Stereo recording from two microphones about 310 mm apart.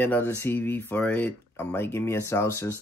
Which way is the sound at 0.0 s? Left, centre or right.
Centre.